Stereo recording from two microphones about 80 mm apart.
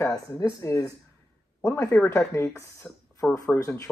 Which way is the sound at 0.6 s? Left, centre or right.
Left.